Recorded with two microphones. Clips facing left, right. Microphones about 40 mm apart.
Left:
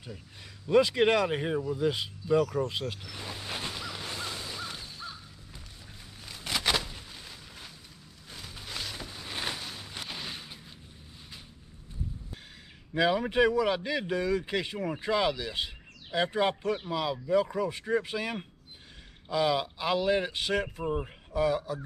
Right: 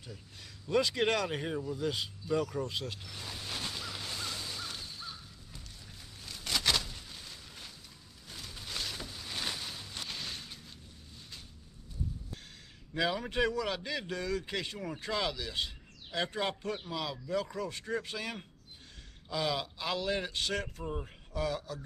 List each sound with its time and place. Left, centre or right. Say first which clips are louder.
0.7 s speech: left 6 dB; centre
2.3 s speech: left 6 dB; left
2.7 s a sound: left 4 dB; centre
8.3 s boat: left 2 dB; centre
12.9 s speech: left 6 dB; centre